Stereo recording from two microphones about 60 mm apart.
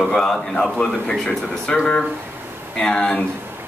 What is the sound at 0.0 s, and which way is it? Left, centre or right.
A man's voice, centre.